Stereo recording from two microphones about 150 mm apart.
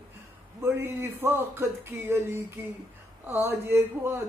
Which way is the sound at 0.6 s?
15° right (ahead or behind).